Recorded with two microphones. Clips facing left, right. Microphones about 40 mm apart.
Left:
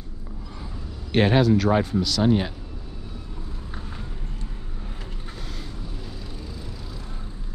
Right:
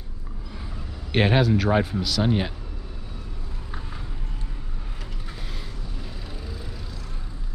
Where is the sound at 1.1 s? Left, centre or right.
Centre.